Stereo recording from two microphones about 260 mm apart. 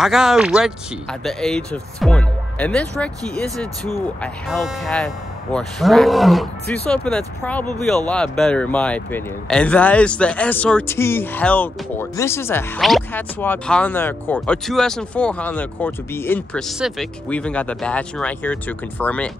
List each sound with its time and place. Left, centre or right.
0.0 s speech: centre